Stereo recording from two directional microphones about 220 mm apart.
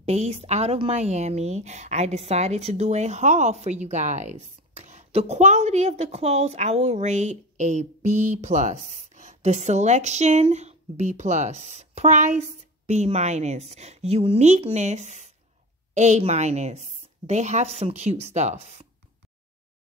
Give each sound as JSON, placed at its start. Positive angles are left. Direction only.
{"t": 0.0, "sound": "a woman's voice", "side_deg": -30}